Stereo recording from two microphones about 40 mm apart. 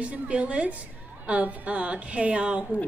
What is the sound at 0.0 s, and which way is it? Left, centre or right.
A woman's voice, right.